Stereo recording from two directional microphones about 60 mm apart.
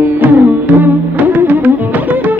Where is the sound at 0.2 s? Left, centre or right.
Right.